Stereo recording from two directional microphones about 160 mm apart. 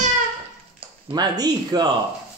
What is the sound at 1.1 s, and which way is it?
Speech, 25° right (ahead or behind).